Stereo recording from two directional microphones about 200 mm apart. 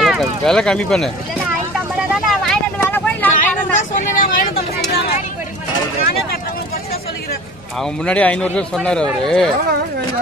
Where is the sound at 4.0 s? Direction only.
45° left (ahead or behind).